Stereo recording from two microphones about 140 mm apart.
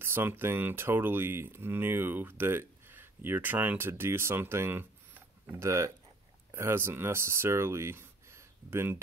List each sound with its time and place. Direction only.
0.0 s speech: 15° right (ahead or behind)